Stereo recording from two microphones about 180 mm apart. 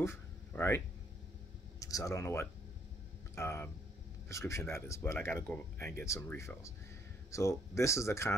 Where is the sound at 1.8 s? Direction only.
20° left (ahead or behind).